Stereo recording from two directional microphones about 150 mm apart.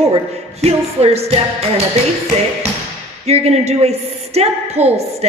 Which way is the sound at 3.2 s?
45° right (ahead or behind).